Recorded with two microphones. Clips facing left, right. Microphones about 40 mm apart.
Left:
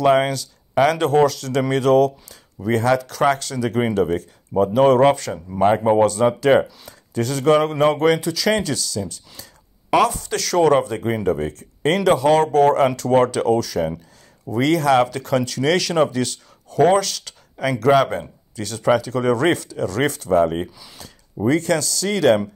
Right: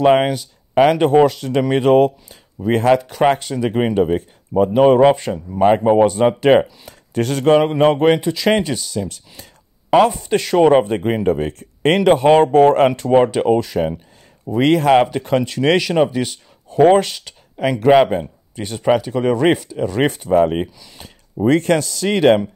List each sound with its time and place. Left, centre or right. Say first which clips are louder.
0.0 s speech: right 3 dB; right
3.1 s speech: right 3 dB; right
5.6 s speech: right 3 dB; centre
5.9 s speech: right 3 dB; right
6.9 s speech: right 3 dB; right
7.5 s speech: right 4 dB; right
12.0 s speech: right 4 dB; right
13.0 s speech: right 3 dB; centre
15.8 s speech: right 2 dB; centre
17.2 s speech: right 4 dB; centre
20.6 s speech: right 2 dB; centre
21.0 s speech: right 4 dB; right